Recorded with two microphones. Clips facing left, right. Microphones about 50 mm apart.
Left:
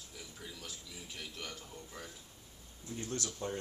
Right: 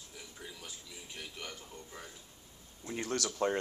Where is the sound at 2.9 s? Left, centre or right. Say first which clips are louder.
Right 5 dB; right.